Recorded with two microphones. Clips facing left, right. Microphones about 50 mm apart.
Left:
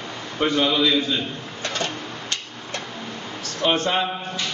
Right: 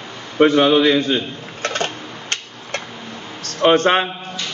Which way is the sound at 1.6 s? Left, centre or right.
Right.